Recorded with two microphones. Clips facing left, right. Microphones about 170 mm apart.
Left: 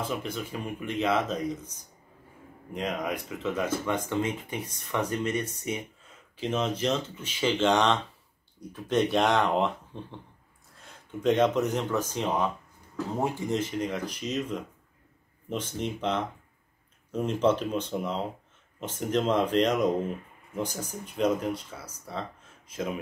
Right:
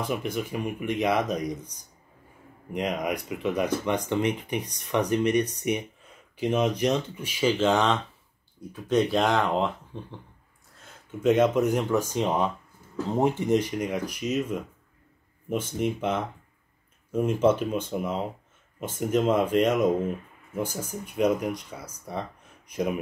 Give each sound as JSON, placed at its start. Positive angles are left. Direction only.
{"t": 0.1, "sound": "speech", "side_deg": -15}
{"t": 2.7, "sound": "speech", "side_deg": -15}
{"t": 10.8, "sound": "a sound", "side_deg": 0}
{"t": 11.2, "sound": "speech", "side_deg": -5}